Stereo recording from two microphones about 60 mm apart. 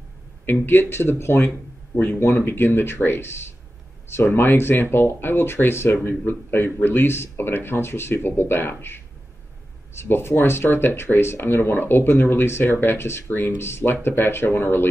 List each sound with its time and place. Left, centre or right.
0.5 s speech: left